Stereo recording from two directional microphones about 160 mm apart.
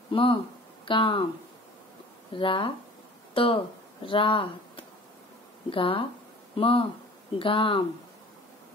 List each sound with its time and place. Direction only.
0.1 s speech: 35° left (ahead or behind)
2.3 s speech: 30° left (ahead or behind)
5.7 s speech: 35° left (ahead or behind)